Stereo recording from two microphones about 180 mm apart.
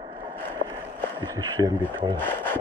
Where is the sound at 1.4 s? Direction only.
20° right (ahead or behind).